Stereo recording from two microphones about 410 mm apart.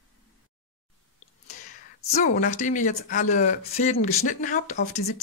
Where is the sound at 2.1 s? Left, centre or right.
Centre.